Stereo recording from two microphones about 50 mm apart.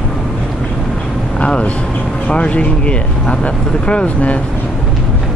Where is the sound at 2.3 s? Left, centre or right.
Left.